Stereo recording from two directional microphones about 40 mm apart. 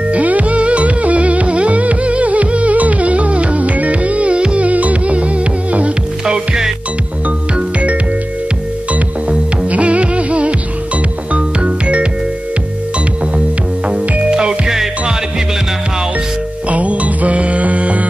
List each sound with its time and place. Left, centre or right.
0.1 s music: right
6.2 s music: centre
7.5 s music: right
9.3 s music: right
13.8 s music: right
14.7 s music: centre
16.6 s music: right